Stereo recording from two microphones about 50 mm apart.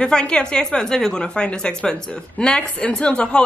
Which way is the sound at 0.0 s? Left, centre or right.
Centre.